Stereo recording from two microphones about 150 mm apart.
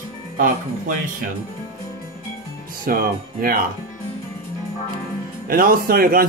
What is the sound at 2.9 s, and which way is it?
Speech, 75° right (ahead or behind).